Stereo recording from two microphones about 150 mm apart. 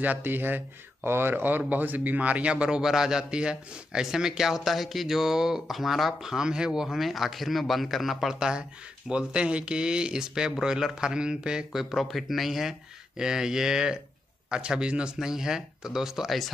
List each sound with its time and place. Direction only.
0.0 s speech: 10° right (ahead or behind)